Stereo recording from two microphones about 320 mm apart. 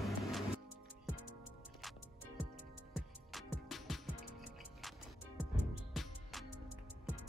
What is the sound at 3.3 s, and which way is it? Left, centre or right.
Music, centre.